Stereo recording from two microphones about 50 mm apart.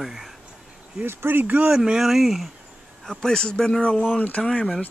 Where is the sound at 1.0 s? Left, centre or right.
Right.